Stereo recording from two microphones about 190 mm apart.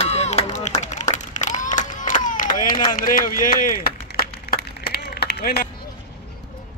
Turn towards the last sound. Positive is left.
turn(degrees=55)  # may be behind; listen again after turning